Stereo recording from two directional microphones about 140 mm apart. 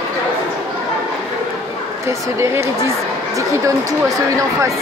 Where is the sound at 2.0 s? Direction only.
20° right (ahead or behind).